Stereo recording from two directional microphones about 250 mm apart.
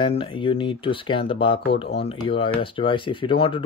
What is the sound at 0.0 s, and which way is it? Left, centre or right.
Speech, centre.